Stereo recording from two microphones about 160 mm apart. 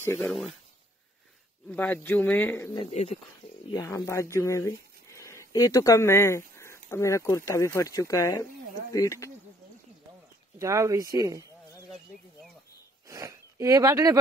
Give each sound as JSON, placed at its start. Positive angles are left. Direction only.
{"t": 0.0, "sound": "speech", "side_deg": 15}
{"t": 1.7, "sound": "speech", "side_deg": 10}
{"t": 2.9, "sound": "speech", "side_deg": 40}
{"t": 3.7, "sound": "speech", "side_deg": 20}
{"t": 10.6, "sound": "speech", "side_deg": -20}
{"t": 13.1, "sound": "speech", "side_deg": -20}